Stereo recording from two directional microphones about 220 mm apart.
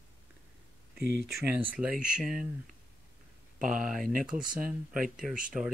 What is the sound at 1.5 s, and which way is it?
Speech, 5° right (ahead or behind).